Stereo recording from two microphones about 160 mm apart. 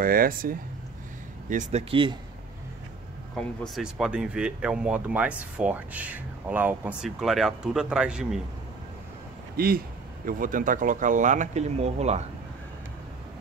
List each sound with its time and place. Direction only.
0.0 s speech: 65° right (ahead or behind)
1.5 s speech: 45° right (ahead or behind)
3.3 s speech: centre (ahead or behind)
9.6 s speech: 70° right (ahead or behind)
10.2 s speech: 60° right (ahead or behind); by 12.3 s 45° right (ahead or behind)